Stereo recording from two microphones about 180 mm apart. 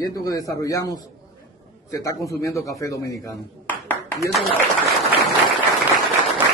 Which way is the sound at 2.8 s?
20° left (ahead or behind).